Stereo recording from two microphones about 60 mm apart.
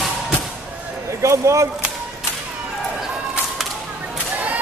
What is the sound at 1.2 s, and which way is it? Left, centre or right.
Speech, right.